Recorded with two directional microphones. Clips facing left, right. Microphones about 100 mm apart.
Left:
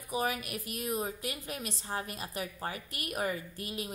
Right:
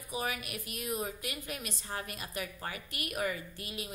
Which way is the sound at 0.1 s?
40° left (ahead or behind).